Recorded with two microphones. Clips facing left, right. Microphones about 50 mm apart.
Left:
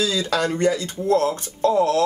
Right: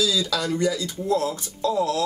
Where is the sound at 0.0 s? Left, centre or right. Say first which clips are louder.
Left 2 dB; left.